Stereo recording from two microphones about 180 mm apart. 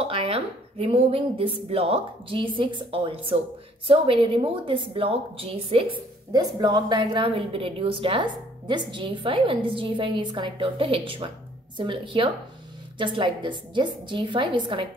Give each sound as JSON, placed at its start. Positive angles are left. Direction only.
{"t": 0.0, "sound": "a woman's voice", "side_deg": -30}